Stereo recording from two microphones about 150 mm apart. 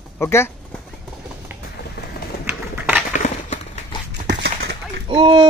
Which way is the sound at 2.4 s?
10° right (ahead or behind).